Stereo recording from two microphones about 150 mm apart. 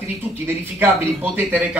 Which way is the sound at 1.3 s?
10° right (ahead or behind).